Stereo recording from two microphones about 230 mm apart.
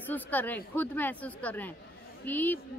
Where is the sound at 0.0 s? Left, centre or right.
Centre.